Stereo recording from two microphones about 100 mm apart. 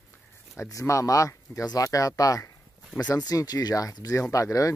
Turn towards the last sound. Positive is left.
turn(degrees=35)  # may be behind; listen again after turning